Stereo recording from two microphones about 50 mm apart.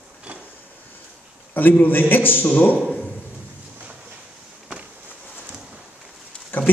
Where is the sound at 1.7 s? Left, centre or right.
Left.